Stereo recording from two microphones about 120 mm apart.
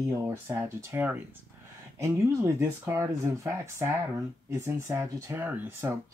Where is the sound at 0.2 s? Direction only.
20° right (ahead or behind).